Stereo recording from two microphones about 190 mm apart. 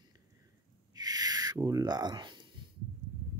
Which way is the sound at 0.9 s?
20° right (ahead or behind).